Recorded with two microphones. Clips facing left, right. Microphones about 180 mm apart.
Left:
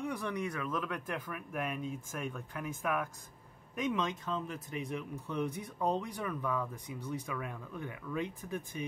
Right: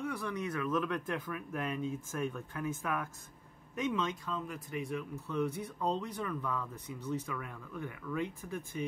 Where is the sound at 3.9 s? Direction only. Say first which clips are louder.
Left 1 dB; 20° left (ahead or behind).